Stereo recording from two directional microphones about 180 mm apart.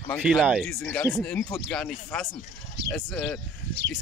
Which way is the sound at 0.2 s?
5° right (ahead or behind).